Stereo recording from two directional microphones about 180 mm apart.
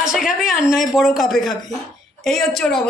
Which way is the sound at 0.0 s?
Centre (ahead or behind).